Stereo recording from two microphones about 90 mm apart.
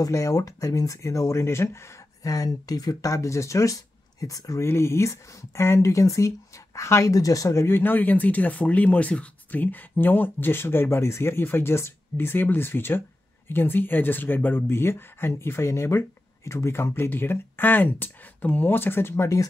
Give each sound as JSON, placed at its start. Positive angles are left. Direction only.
{"t": 0.0, "sound": "speech", "side_deg": 40}
{"t": 4.6, "sound": "speech", "side_deg": 30}